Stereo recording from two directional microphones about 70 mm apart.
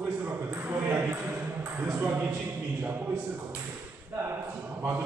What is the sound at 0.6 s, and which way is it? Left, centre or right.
A man's voice, right.